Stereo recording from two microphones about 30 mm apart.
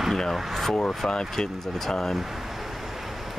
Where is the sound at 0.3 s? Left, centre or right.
Centre.